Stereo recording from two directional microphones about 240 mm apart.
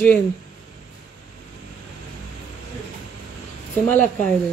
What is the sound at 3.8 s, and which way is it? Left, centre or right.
Speech, left.